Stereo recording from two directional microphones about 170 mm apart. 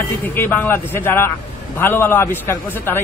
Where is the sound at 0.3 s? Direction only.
10° left (ahead or behind).